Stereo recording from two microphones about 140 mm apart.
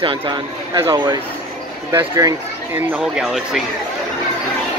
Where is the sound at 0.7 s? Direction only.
20° right (ahead or behind).